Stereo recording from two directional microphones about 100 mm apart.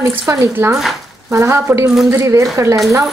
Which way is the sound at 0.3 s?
30° right (ahead or behind).